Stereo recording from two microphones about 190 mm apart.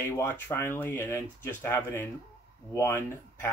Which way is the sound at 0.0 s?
10° left (ahead or behind).